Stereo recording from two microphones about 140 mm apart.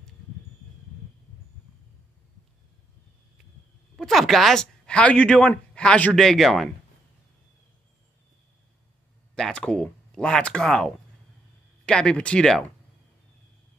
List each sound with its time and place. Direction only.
3.9 s speech: centre (ahead or behind)
9.3 s speech: 5° left (ahead or behind)